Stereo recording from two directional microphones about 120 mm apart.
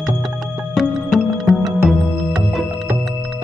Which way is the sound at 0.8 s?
Centre (ahead or behind).